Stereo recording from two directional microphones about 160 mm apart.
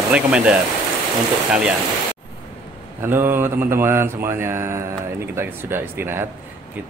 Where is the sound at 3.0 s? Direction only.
15° right (ahead or behind).